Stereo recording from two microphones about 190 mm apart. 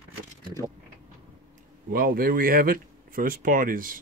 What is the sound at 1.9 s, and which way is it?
Speech, 50° right (ahead or behind).